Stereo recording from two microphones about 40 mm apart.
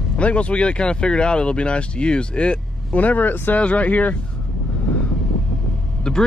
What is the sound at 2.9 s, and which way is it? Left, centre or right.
Speech, left.